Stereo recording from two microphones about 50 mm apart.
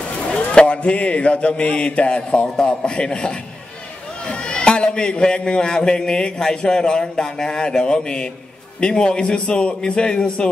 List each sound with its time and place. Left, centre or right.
0.3 s a man's voice: left